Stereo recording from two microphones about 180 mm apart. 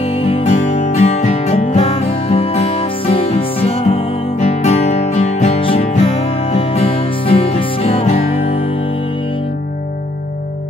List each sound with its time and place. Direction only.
0.0 s music: 30° left (ahead or behind)